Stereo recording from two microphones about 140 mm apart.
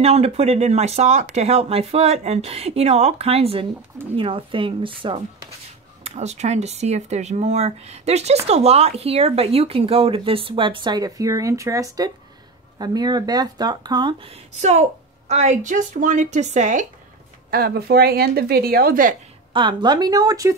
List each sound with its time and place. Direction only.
0.0 s speech: 45° right (ahead or behind)
6.0 s speech: 55° right (ahead or behind); by 14.3 s 30° right (ahead or behind)
14.6 s a woman's voice: 55° right (ahead or behind)
17.5 s speech: 90° right
19.5 s speech: 35° right (ahead or behind)